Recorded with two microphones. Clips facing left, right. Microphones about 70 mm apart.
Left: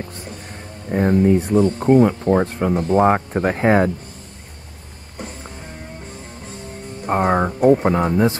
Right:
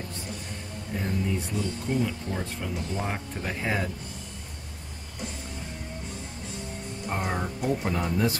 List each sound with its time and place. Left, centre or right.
0.8 s speech: left
7.1 s speech: left